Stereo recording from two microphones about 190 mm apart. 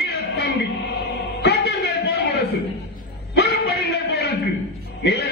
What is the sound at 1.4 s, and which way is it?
Music, 65° left (ahead or behind).